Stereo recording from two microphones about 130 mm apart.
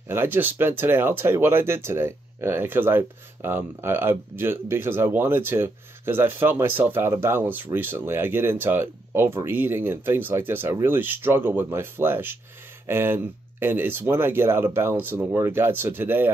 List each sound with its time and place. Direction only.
0.1 s speech: 15° right (ahead or behind)